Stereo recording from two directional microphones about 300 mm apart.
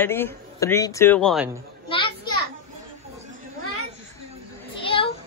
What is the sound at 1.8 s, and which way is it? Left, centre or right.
Children playing, centre.